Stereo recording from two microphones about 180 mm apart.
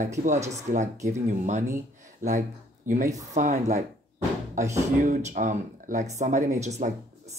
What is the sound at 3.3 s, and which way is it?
Speech, 40° right (ahead or behind).